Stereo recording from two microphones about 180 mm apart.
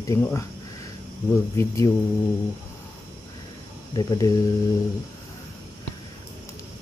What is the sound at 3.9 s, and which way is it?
Speech, 20° left (ahead or behind).